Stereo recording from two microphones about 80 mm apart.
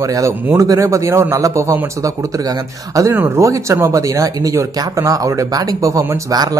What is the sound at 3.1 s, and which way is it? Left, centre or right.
Speech, right.